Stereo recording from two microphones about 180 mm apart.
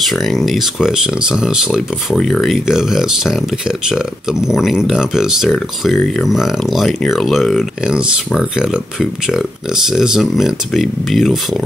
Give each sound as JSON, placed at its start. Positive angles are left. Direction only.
{"t": 0.0, "sound": "speech", "side_deg": 0}